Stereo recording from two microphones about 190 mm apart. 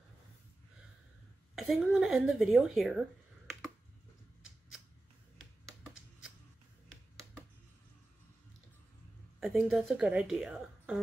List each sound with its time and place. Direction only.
1.5 s speech: centre (ahead or behind)
9.4 s a woman's voice: centre (ahead or behind)